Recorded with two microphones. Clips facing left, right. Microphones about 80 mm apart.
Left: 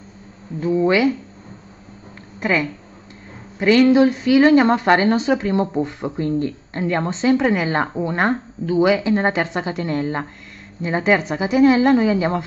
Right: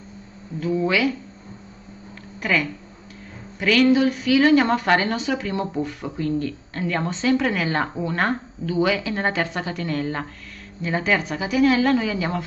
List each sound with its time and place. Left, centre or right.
0.7 s a woman's voice: left
2.4 s a woman's voice: left